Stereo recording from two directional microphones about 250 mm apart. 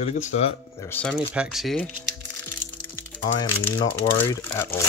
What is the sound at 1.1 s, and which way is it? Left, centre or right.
Speech, centre.